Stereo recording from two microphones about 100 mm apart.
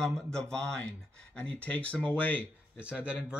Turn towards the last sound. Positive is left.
turn(degrees=-10)  # may be behind; listen again after turning